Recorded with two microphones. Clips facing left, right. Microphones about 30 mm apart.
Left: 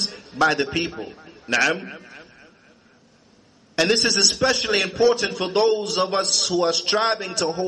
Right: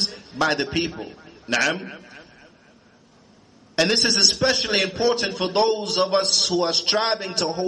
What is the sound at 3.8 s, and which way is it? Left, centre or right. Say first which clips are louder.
A man's voice: even; centre.